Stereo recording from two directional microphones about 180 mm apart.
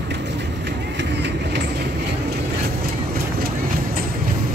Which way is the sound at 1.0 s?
70° right (ahead or behind).